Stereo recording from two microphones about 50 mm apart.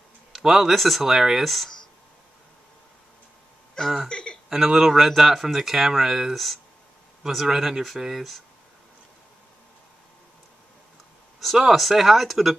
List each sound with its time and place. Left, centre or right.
0.3 s speech: centre
4.1 s a sound: centre
4.5 s speech: centre
11.3 s speech: centre